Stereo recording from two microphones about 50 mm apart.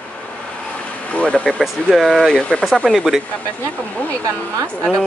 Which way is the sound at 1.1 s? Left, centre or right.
Left.